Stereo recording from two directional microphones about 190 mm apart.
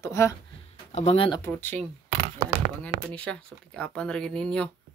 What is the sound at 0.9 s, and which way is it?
Speech, 35° left (ahead or behind).